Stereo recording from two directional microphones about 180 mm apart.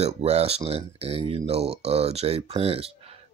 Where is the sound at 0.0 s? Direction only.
35° right (ahead or behind).